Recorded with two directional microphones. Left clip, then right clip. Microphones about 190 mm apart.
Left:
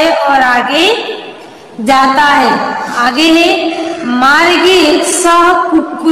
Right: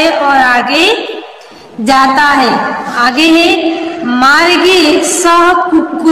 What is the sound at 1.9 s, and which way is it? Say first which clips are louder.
A woman's voice: even; 10° right (ahead or behind).